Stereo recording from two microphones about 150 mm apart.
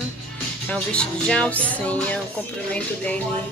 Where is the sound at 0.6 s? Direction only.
5° left (ahead or behind).